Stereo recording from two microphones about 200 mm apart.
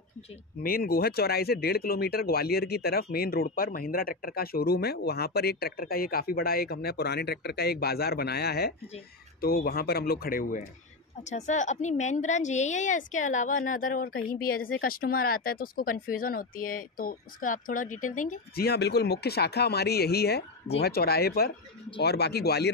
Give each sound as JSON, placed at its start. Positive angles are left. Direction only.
{"t": 0.6, "sound": "a woman's voice", "side_deg": 50}